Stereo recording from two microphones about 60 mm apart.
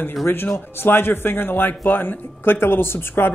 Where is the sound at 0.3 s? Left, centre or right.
Left.